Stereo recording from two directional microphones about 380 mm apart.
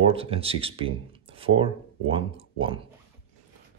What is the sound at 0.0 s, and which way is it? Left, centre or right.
Speech, centre.